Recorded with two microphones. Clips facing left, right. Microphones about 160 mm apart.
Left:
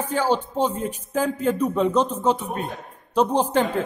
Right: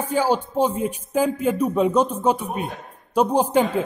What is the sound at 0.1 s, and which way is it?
A man's voice, 10° right (ahead or behind).